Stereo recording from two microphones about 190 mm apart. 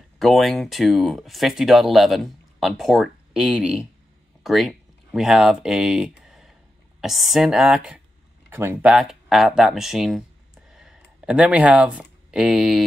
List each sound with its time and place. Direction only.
0.2 s speech: centre (ahead or behind)